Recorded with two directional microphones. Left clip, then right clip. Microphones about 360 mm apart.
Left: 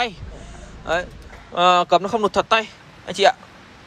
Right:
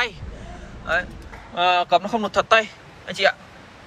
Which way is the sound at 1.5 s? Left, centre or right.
Left.